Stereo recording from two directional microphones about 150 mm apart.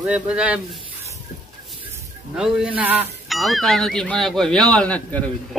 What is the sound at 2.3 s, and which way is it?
Speech, 5° right (ahead or behind).